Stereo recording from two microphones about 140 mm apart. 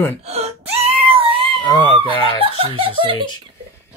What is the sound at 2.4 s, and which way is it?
Speech, 40° right (ahead or behind).